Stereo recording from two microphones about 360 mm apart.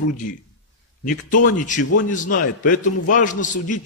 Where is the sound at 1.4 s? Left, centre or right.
Left.